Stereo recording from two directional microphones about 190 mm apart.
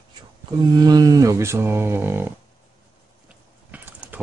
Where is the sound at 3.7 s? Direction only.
10° right (ahead or behind).